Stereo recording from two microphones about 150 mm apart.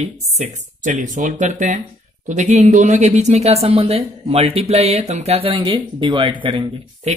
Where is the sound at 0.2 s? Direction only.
45° right (ahead or behind).